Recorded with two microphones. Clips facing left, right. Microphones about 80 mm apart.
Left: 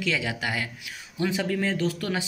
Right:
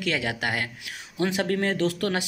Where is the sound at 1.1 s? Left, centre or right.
Right.